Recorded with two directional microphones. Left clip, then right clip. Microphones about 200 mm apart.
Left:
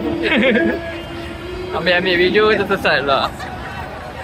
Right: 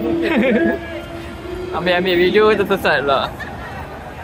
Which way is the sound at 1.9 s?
15° right (ahead or behind).